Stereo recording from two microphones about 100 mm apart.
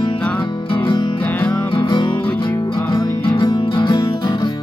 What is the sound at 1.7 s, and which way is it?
Music, 55° left (ahead or behind).